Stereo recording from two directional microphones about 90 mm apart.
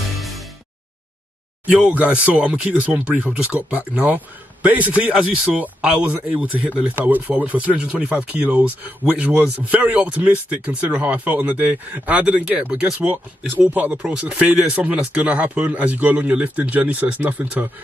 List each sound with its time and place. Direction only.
0.2 s music: centre (ahead or behind)
1.7 s speech: 15° right (ahead or behind)